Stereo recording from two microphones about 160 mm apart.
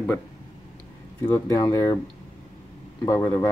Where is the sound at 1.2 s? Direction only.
20° left (ahead or behind).